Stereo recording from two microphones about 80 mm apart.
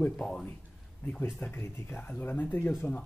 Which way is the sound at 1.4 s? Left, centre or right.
Left.